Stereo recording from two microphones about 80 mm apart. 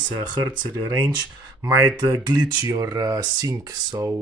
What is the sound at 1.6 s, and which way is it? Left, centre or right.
Mantra, right.